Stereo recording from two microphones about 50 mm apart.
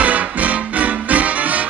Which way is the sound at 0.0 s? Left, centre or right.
Right.